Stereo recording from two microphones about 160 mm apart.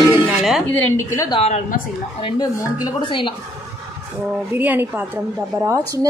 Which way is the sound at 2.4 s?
20° left (ahead or behind).